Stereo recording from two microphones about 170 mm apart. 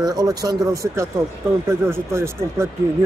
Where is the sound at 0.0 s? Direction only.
20° right (ahead or behind).